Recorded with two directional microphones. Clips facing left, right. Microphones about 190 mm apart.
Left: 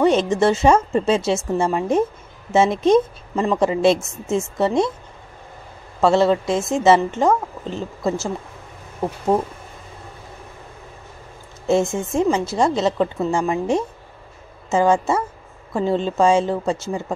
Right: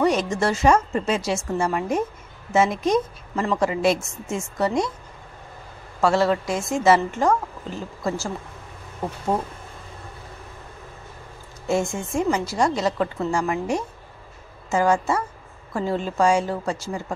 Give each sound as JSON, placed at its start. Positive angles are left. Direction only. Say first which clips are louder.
{"t": 0.0, "sound": "a woman's voice", "louder": "left 5 dB", "side_deg": 25}
{"t": 5.9, "sound": "a woman's voice", "louder": "left 4 dB", "side_deg": 25}
{"t": 11.6, "sound": "a woman's voice", "louder": "left 5 dB", "side_deg": 25}